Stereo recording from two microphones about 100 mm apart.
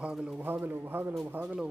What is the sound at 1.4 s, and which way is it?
Speech, 10° right (ahead or behind).